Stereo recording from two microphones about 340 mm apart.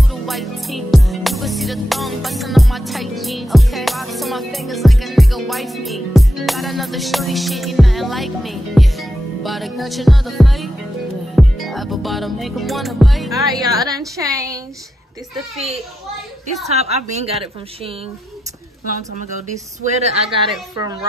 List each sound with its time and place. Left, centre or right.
0.1 s music: centre
16.6 s a woman's voice: centre
19.1 s a woman's voice: centre